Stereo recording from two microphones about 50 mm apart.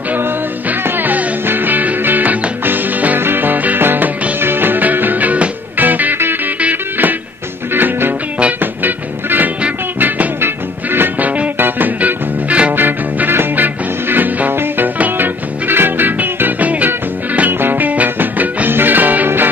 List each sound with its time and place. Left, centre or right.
0.8 s music: right
12.0 s music: right
12.7 s music: right